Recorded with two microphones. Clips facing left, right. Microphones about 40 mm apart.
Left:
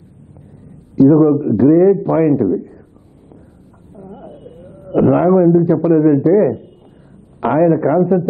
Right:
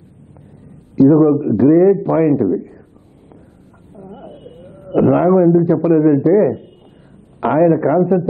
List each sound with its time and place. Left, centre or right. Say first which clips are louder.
0.7 s a man's voice: left 1 dB; centre
4.1 s a sound: even; right
4.9 s a man's voice: even; centre